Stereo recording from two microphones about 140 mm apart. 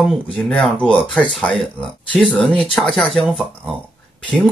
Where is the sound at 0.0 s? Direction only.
Centre (ahead or behind).